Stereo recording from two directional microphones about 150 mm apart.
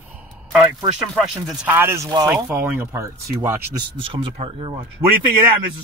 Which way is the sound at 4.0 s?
35° right (ahead or behind).